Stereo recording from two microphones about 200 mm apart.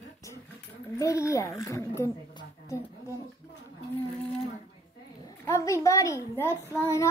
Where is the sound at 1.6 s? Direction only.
15° left (ahead or behind).